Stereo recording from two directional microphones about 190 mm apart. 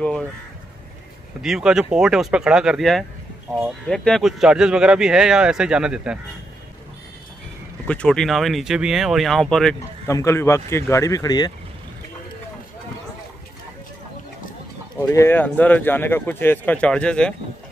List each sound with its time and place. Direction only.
1.4 s speech: 5° right (ahead or behind)
7.8 s speech: 5° left (ahead or behind)
10.0 s speech: 15° left (ahead or behind)
15.0 s speech: 15° left (ahead or behind)